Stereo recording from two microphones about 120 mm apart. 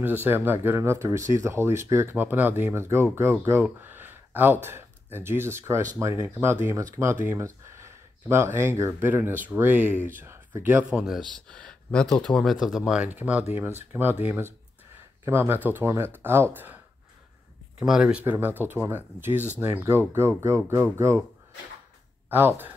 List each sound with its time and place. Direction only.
0.0 s speech: 15° right (ahead or behind)
11.4 s speech: 10° left (ahead or behind); by 16.8 s 20° right (ahead or behind)
17.7 s speech: 5° right (ahead or behind)
22.3 s speech: 15° right (ahead or behind)